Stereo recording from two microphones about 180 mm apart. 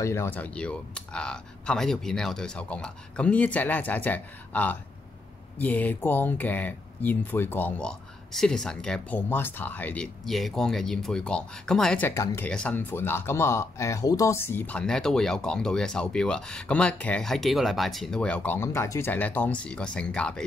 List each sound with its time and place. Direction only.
0.0 s speech: 15° left (ahead or behind)
12.1 s speech: 15° left (ahead or behind)